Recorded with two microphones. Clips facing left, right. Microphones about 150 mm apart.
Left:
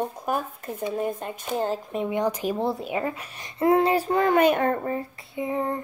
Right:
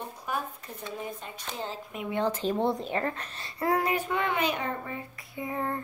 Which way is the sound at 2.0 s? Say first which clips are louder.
Left 2 dB; 15° left (ahead or behind).